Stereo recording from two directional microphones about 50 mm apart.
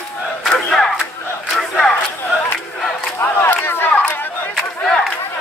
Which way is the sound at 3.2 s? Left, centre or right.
Left.